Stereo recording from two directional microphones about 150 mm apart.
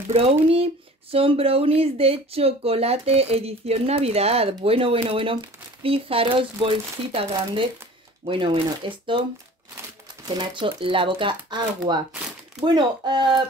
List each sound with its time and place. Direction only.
0.1 s speech: 40° right (ahead or behind)
10.2 s speech: 30° right (ahead or behind)
12.5 s speech: 30° right (ahead or behind)